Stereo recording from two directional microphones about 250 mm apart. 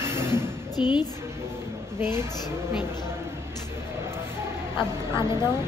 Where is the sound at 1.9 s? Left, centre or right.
Centre.